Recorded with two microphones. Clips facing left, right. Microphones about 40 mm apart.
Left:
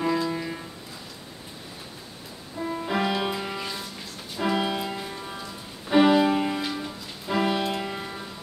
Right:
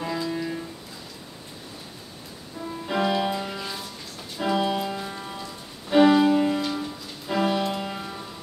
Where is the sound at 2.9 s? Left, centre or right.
Centre.